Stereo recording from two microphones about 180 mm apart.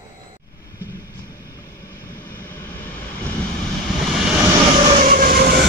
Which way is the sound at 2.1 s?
15° left (ahead or behind).